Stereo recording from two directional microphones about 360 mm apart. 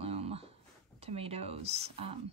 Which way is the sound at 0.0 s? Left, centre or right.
Centre.